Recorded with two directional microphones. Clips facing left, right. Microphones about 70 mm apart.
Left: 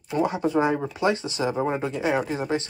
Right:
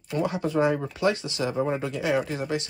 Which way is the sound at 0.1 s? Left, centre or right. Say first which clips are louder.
Left 3 dB; left.